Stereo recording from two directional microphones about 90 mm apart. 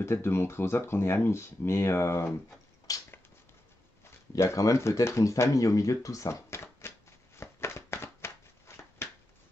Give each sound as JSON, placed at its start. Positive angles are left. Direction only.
{"t": 0.0, "sound": "speech", "side_deg": 30}
{"t": 2.9, "sound": "a sound", "side_deg": 40}
{"t": 4.4, "sound": "speech", "side_deg": 35}
{"t": 7.3, "sound": "shuffling cards", "side_deg": 30}